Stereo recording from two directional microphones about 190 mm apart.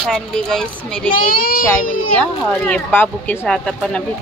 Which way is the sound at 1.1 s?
50° left (ahead or behind).